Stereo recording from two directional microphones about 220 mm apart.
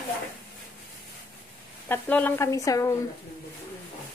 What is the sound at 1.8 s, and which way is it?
A woman's voice, 10° left (ahead or behind).